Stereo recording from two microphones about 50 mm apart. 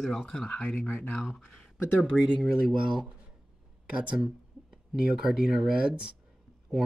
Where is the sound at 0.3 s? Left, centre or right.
Centre.